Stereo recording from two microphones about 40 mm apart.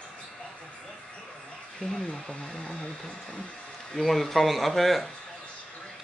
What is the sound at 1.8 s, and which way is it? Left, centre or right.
Speech, left.